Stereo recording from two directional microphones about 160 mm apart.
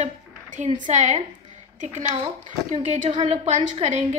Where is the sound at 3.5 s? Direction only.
45° right (ahead or behind).